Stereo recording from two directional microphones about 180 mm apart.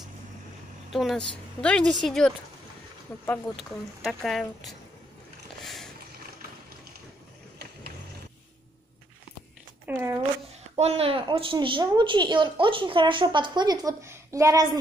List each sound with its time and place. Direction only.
0.9 s speech: 5° left (ahead or behind)
5.6 s vehicle: centre (ahead or behind)
9.9 s speech: 10° right (ahead or behind)
10.8 s a woman's voice: 35° right (ahead or behind)